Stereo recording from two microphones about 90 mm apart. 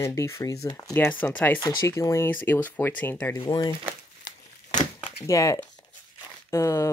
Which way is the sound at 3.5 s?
55° left (ahead or behind).